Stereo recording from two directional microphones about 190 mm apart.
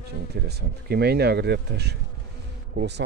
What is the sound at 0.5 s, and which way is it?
Speech, 60° right (ahead or behind).